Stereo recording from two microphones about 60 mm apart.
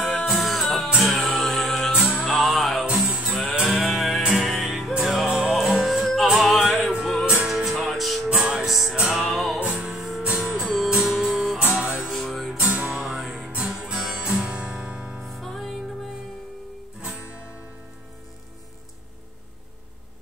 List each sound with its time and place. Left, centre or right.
0.3 s music: centre
1.4 s music: centre
1.9 s music: centre
2.3 s music: centre
3.0 s music: centre
3.9 s music: centre
8.3 s music: centre
8.6 s music: centre
9.6 s music: centre
12.2 s music: centre
12.5 s music: right
15.2 s music: centre
17.0 s music: centre